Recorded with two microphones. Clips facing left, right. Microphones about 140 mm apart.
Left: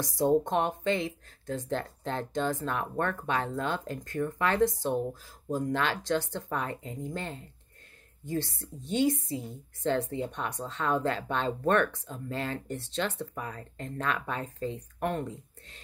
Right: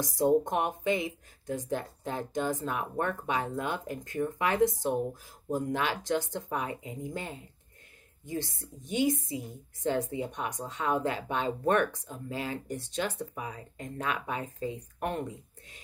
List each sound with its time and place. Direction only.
0.1 s speech: 10° right (ahead or behind)
8.5 s speech: 15° right (ahead or behind)